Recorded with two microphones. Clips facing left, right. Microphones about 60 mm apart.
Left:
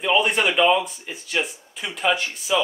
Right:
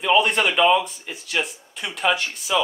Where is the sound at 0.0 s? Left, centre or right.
Centre.